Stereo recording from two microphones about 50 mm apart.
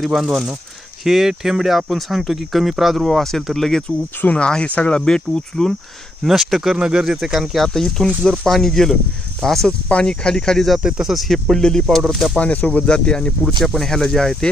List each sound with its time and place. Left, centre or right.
0.0 s speech: centre
4.4 s speech: centre
6.2 s speech: centre
6.8 s speech: centre
9.7 s speech: left
10.8 s speech: centre
11.1 s speech: centre
12.4 s speech: left
13.7 s speech: centre